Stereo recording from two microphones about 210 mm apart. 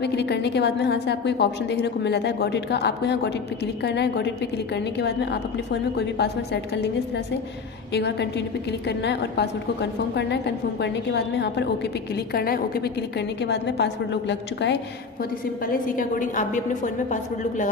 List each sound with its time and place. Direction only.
0.0 s a woman's voice: 55° left (ahead or behind)
7.9 s a woman's voice: 55° left (ahead or behind)
15.6 s a woman's voice: 40° left (ahead or behind)